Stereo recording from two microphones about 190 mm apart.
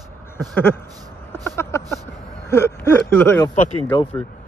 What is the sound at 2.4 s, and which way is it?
Speech, 15° left (ahead or behind).